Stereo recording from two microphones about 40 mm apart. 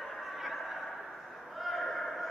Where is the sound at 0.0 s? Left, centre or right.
Centre.